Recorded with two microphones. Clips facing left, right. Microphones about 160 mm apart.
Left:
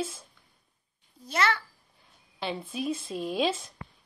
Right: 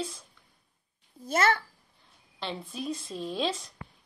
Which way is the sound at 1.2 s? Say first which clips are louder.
Right 2 dB; 50° right (ahead or behind).